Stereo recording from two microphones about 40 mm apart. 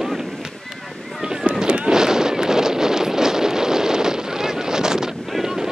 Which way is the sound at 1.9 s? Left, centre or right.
Centre.